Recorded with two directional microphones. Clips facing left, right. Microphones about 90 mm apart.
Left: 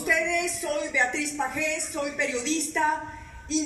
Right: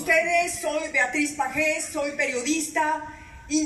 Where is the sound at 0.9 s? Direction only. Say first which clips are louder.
Right 2 dB; 25° left (ahead or behind).